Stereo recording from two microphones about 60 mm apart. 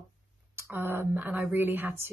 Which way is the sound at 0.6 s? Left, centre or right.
Right.